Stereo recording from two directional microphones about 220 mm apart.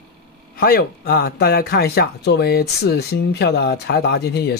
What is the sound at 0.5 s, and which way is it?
Speech, 45° left (ahead or behind).